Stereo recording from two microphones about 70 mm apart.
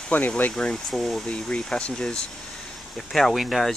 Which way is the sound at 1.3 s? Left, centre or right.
Centre.